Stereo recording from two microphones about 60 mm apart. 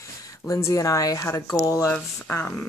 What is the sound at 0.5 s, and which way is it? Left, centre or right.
Speech, left.